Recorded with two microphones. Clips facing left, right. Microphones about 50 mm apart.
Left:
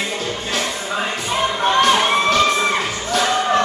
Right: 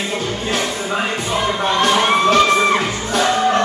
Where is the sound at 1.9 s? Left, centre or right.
Centre.